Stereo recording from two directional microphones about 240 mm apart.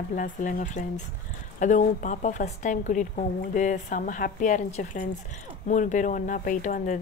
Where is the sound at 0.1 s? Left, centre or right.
Left.